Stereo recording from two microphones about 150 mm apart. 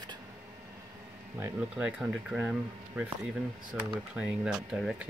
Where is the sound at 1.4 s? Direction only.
10° right (ahead or behind).